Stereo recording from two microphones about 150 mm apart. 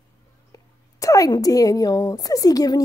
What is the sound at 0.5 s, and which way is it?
A woman's voice, 25° left (ahead or behind).